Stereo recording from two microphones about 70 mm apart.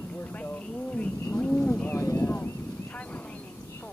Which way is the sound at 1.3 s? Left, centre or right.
Left.